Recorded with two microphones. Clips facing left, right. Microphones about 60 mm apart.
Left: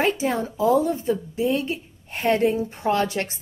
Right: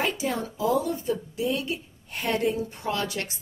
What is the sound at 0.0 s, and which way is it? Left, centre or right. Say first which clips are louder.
A woman's voice: left 5 dB; left.